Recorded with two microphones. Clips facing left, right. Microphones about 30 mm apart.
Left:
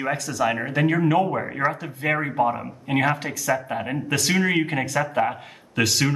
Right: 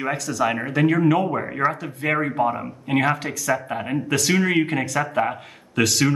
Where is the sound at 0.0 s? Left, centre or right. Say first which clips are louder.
Right 1 dB; centre.